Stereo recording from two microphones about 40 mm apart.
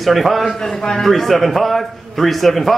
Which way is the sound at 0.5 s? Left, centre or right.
Centre.